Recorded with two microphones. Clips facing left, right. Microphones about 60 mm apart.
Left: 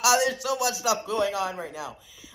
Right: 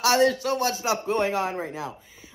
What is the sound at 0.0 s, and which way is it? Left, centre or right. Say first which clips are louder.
A man's voice: right 2 dB; right.